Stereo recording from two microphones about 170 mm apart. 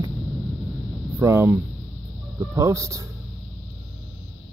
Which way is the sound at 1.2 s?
15° right (ahead or behind).